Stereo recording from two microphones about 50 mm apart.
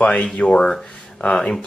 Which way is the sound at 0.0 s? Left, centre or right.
Left.